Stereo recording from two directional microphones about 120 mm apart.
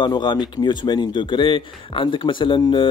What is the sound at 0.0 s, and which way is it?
Speech, 40° left (ahead or behind).